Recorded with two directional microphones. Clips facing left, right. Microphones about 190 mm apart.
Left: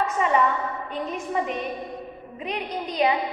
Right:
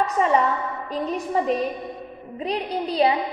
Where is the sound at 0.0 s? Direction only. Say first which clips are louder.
Right 3 dB; 35° right (ahead or behind).